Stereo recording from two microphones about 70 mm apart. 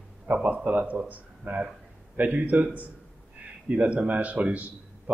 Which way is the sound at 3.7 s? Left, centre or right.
Centre.